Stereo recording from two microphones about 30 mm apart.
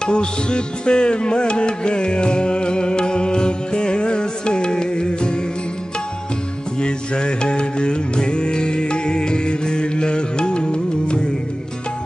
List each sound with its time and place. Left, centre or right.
0.0 s music: left
6.8 s music: left